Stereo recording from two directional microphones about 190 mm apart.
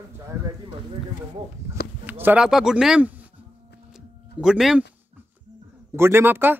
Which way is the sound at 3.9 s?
5° right (ahead or behind).